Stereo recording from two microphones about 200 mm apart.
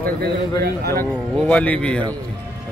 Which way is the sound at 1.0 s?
5° left (ahead or behind).